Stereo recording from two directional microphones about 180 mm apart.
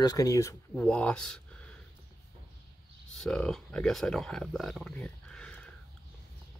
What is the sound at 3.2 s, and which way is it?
Speech, centre (ahead or behind).